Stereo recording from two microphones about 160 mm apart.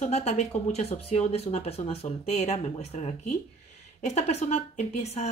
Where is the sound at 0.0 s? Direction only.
40° left (ahead or behind).